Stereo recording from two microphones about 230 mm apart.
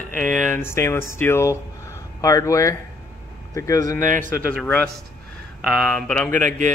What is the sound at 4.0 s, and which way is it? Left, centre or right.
Speech, right.